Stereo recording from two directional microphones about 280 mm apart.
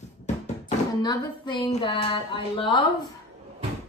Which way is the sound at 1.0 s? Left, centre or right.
Centre.